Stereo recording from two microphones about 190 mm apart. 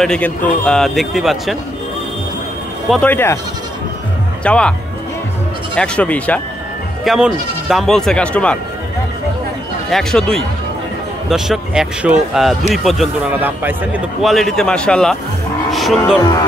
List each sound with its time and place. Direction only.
0.0 s a man's voice: 5° left (ahead or behind)
2.9 s speech: 10° left (ahead or behind)
4.5 s a man's voice: 5° left (ahead or behind)
5.8 s a man's voice: 5° left (ahead or behind)
9.8 s a man's voice: 5° left (ahead or behind)